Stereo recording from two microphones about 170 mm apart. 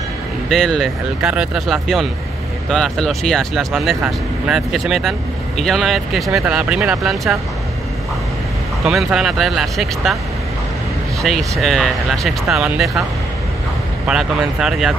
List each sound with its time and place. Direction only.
0.5 s speech: centre (ahead or behind)
8.8 s speech: 5° right (ahead or behind)
11.3 s speech: centre (ahead or behind)
14.0 s speech: 5° right (ahead or behind)